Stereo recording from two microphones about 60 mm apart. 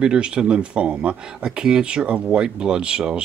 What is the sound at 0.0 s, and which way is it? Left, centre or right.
Speech, centre.